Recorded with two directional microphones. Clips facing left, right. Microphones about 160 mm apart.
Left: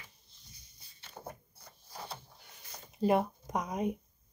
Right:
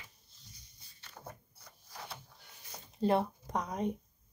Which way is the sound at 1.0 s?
25° left (ahead or behind).